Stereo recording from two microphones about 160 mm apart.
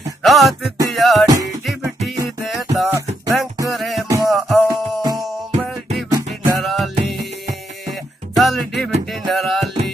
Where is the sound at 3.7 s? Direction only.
Centre (ahead or behind).